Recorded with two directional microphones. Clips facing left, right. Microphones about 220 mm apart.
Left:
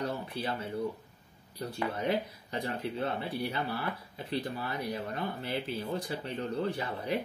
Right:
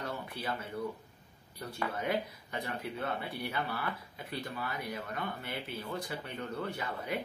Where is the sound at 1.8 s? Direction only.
25° left (ahead or behind).